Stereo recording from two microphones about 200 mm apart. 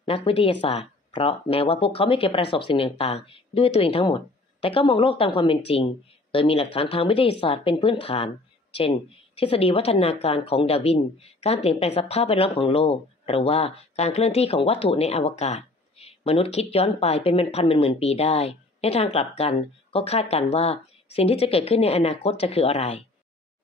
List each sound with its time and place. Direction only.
0.0 s speech: 25° left (ahead or behind)
9.4 s speech: 30° left (ahead or behind)